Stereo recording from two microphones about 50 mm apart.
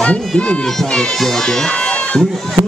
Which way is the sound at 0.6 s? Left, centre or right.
Centre.